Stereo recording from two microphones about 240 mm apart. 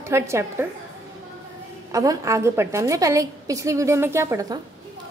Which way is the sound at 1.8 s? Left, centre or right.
Centre.